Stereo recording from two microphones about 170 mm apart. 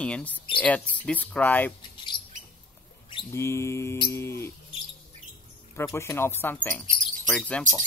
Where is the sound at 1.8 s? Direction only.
30° left (ahead or behind).